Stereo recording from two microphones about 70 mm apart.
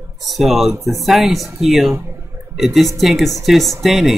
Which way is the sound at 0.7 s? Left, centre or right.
Right.